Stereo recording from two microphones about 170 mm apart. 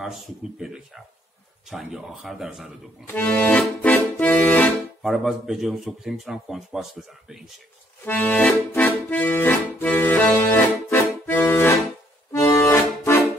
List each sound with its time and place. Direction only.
0.0 s speech: centre (ahead or behind)
3.1 s accordion: 10° left (ahead or behind)
8.0 s accordion: 10° left (ahead or behind)